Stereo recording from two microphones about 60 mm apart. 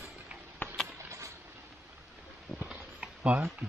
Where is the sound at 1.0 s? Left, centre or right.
Right.